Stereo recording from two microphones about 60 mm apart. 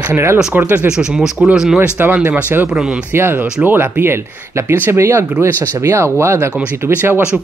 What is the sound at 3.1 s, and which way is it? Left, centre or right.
Speech, right.